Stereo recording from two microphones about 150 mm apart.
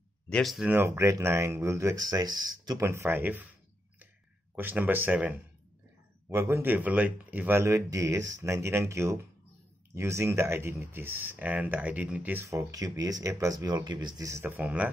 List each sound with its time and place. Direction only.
0.3 s speech: centre (ahead or behind)
0.7 s speech: 15° right (ahead or behind)
4.6 s speech: 10° right (ahead or behind)